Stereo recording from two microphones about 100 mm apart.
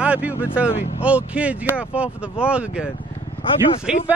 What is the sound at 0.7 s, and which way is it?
Speech, 90° left.